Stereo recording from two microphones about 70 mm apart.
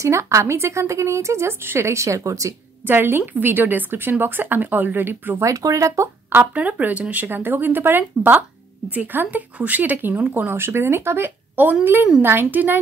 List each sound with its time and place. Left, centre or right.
0.0 s speech: right
2.9 s speech: right
5.4 s speech: right
6.3 s speech: right